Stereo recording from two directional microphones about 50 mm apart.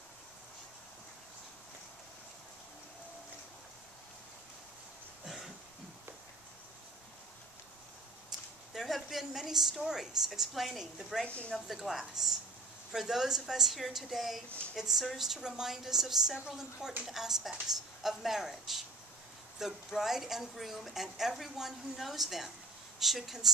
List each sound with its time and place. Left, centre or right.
5.2 s cough: centre
8.3 s a woman's voice: centre
11.2 s speech: left
11.5 s a woman's voice: centre